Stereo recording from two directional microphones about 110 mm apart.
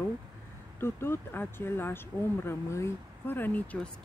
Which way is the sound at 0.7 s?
20° left (ahead or behind).